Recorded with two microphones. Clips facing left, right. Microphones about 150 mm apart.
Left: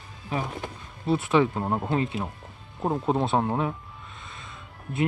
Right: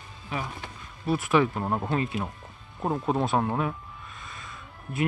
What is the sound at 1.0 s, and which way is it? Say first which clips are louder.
Speech: left 1 dB; 25° left (ahead or behind).